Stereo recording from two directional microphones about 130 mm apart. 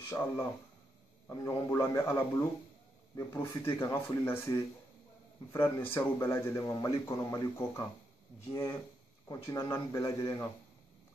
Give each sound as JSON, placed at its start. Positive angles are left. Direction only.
{"t": 0.1, "sound": "speech", "side_deg": 20}
{"t": 9.3, "sound": "speech", "side_deg": 25}